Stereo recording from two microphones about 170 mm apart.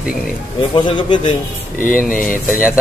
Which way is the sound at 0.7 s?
30° left (ahead or behind).